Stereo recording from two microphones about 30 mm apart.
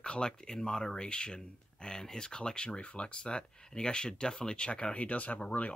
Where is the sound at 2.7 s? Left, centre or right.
Left.